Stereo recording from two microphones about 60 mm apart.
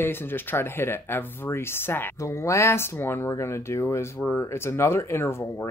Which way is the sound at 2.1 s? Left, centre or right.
Left.